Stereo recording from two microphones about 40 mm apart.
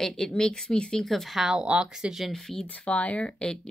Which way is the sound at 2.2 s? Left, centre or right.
Centre.